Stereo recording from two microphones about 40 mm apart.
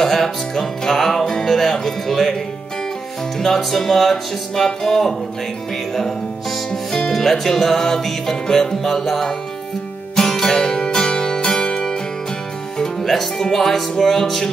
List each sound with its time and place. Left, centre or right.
0.0 s music: centre
1.5 s speech: centre
3.3 s speech: centre
4.6 s music: centre
6.7 s music: centre
12.7 s speech: centre